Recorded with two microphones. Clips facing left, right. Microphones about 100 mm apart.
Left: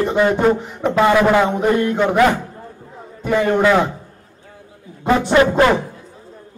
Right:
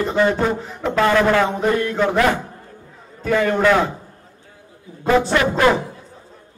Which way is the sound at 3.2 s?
15° left (ahead or behind).